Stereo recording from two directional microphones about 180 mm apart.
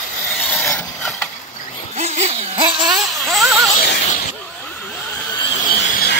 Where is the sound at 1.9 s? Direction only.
35° right (ahead or behind).